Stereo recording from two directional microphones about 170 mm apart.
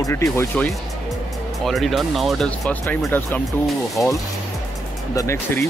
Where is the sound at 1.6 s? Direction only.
Centre (ahead or behind).